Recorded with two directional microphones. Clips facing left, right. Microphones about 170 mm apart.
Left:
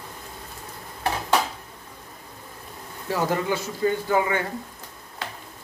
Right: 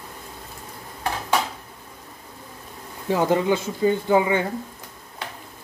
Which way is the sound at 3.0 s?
20° right (ahead or behind).